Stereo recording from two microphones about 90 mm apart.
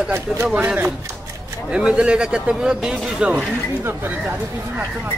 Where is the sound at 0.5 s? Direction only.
20° right (ahead or behind).